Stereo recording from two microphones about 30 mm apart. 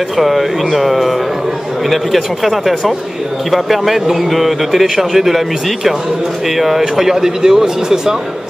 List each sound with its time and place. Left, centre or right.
0.2 s a man's voice: centre
6.5 s speech: centre